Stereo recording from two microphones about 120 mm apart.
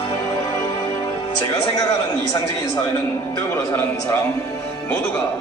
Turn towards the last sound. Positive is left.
turn(degrees=20)  # may be behind; listen again after turning